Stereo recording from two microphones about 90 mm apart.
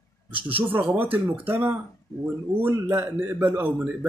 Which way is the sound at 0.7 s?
20° right (ahead or behind).